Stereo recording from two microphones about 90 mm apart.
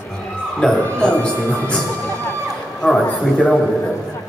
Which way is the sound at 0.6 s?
5° left (ahead or behind).